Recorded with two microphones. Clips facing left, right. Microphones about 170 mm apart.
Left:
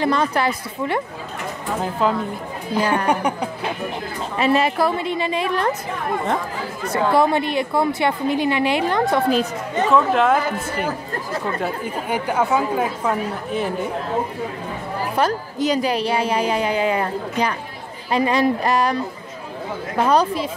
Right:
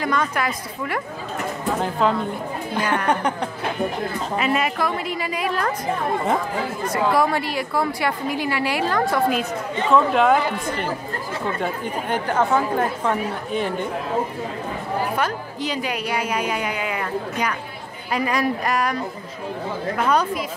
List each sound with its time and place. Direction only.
0.0 s a woman's voice: 30° left (ahead or behind)
1.8 s speech: 5° left (ahead or behind)
4.4 s a woman's voice: 30° left (ahead or behind)
7.2 s a woman's voice: 20° left (ahead or behind)
9.1 s a woman's voice: 35° left (ahead or behind)
9.8 s speech: centre (ahead or behind)
15.1 s a woman's voice: 40° left (ahead or behind)
20.0 s a woman's voice: 30° left (ahead or behind)